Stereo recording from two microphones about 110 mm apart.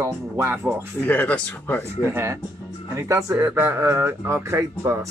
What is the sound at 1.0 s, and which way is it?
Speech, 10° left (ahead or behind).